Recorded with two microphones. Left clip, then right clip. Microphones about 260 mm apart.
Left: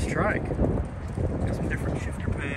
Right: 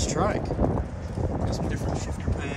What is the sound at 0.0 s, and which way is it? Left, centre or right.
Vehicle, centre.